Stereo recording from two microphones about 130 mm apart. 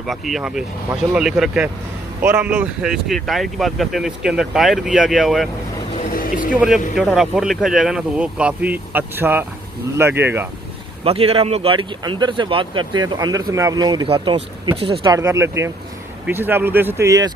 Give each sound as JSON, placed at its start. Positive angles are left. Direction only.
{"t": 0.0, "sound": "speech", "side_deg": 0}
{"t": 6.1, "sound": "a sound", "side_deg": 90}
{"t": 7.0, "sound": "speech", "side_deg": 0}
{"t": 11.1, "sound": "speech", "side_deg": -50}
{"t": 14.0, "sound": "speech", "side_deg": -45}
{"t": 15.0, "sound": "speech", "side_deg": -20}